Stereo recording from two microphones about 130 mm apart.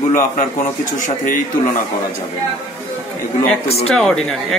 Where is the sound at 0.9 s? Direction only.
85° left.